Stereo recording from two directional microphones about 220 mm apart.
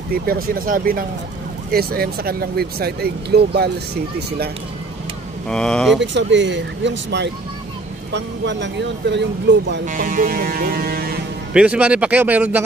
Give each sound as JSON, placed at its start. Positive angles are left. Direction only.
{"t": 0.1, "sound": "music", "side_deg": -40}
{"t": 1.7, "sound": "speech", "side_deg": -45}
{"t": 5.5, "sound": "speech", "side_deg": 5}
{"t": 5.9, "sound": "speech", "side_deg": -55}
{"t": 9.8, "sound": "music", "side_deg": -40}
{"t": 11.5, "sound": "speech", "side_deg": -5}